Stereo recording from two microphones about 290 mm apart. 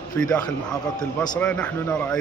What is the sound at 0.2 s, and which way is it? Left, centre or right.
A man's voice, centre.